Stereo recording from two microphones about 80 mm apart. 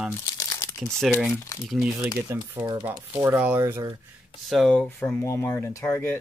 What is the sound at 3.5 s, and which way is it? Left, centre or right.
Speech, right.